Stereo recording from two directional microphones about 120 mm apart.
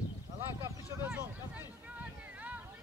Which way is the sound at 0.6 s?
25° right (ahead or behind).